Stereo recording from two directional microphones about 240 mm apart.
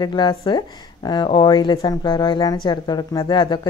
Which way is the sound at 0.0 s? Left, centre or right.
Centre.